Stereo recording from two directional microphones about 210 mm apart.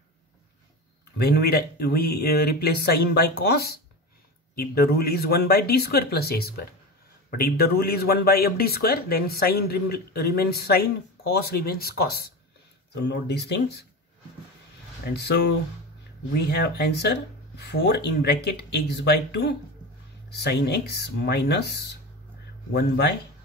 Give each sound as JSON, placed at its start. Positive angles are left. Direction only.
{"t": 1.1, "sound": "speech", "side_deg": 50}
{"t": 15.0, "sound": "speech", "side_deg": 50}